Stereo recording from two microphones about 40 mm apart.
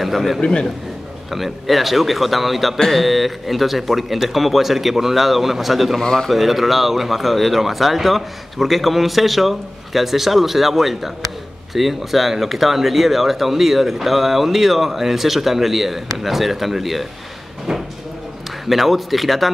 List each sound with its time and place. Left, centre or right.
0.0 s a man's voice: centre
0.4 s a man's voice: left
1.3 s speech: centre
5.9 s a man's voice: centre
6.3 s speech: centre
17.7 s a sound: centre
18.7 s speech: centre